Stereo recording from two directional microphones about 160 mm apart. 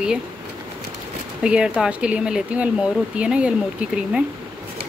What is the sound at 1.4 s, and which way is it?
Speech, 5° right (ahead or behind).